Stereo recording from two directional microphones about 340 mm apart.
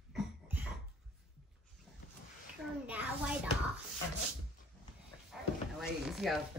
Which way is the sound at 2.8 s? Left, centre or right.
Centre.